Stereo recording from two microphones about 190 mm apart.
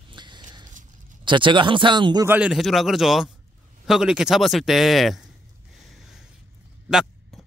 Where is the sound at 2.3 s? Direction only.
5° right (ahead or behind).